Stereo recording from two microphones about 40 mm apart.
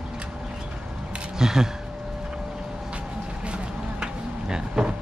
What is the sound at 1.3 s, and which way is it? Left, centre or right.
Speech, centre.